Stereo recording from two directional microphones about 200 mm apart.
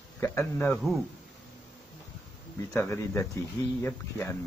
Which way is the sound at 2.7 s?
10° left (ahead or behind).